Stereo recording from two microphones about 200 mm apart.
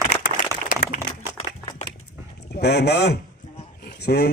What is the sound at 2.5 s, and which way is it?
Speech, 55° left (ahead or behind).